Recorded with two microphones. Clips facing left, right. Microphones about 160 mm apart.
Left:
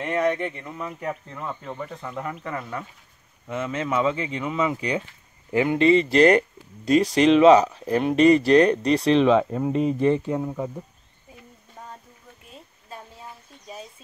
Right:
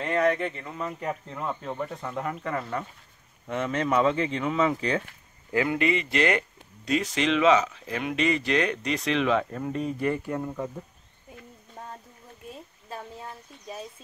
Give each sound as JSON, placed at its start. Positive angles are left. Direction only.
{"t": 0.1, "sound": "speech", "side_deg": 20}
{"t": 0.6, "sound": "speech", "side_deg": 0}
{"t": 5.5, "sound": "speech", "side_deg": 25}